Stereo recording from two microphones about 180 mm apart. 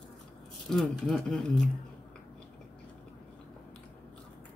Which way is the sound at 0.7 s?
Centre (ahead or behind).